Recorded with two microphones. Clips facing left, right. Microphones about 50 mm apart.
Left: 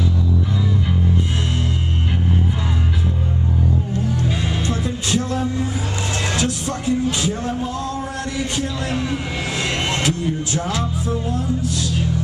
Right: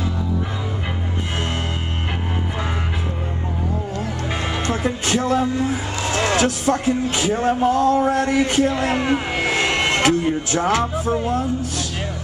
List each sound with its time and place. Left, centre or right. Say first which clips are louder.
4.3 s music: even; right
6.1 s speech: right 5 dB; right